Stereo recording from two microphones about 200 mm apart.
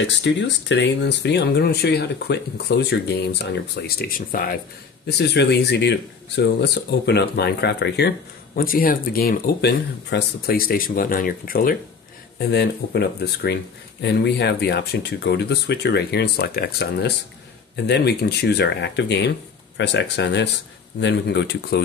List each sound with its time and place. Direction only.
0.0 s speech: 65° left (ahead or behind); by 4.6 s 45° left (ahead or behind)
5.0 s speech: 55° left (ahead or behind)
8.5 s speech: 45° left (ahead or behind)